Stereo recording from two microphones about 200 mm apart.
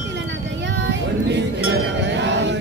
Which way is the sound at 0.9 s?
60° right (ahead or behind).